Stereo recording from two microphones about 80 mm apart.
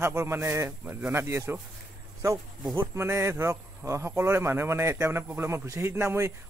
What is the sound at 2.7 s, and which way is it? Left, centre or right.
Speech, right.